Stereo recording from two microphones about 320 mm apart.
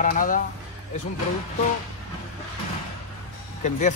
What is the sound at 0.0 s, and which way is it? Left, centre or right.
Speech, left.